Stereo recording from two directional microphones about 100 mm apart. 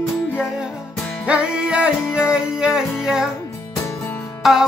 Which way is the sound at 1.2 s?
10° right (ahead or behind).